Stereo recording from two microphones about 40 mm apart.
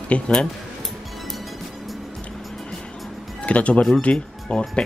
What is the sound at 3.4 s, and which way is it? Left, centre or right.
Speech, left.